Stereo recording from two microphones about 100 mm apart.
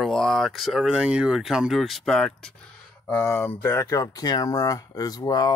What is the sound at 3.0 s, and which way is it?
Speech, 25° left (ahead or behind).